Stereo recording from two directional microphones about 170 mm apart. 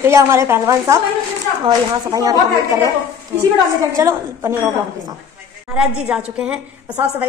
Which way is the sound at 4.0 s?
15° right (ahead or behind).